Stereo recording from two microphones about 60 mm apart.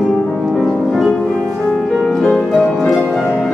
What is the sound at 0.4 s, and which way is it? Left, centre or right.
Music, centre.